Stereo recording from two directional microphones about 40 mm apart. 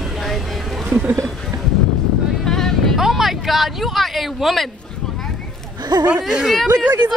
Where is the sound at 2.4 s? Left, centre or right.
Centre.